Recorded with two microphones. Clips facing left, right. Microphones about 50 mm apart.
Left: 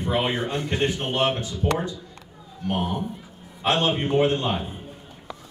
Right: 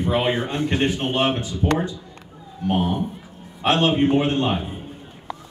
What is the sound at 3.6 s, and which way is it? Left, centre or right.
Speech, right.